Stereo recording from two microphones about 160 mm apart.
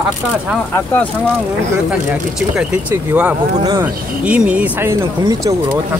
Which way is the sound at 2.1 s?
5° right (ahead or behind).